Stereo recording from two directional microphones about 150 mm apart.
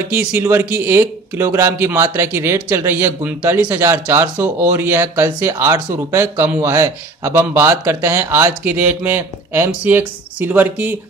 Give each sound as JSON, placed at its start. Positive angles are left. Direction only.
{"t": 0.1, "sound": "speech", "side_deg": -10}